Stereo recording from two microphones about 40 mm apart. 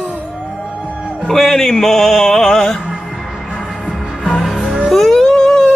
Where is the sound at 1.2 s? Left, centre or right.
Centre.